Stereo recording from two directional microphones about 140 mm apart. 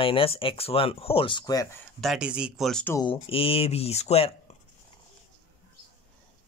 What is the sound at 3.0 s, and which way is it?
Speech, 40° left (ahead or behind).